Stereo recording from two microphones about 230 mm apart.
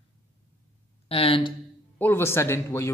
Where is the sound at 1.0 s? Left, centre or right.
Left.